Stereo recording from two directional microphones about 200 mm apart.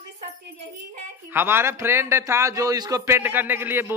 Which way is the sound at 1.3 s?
10° right (ahead or behind).